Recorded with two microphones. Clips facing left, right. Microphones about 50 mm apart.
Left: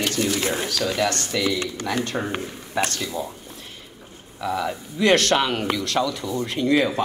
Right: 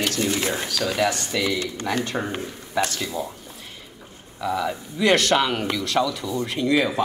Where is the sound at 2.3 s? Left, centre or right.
Left.